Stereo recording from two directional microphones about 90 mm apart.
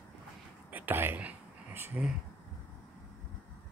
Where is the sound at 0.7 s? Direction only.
20° right (ahead or behind).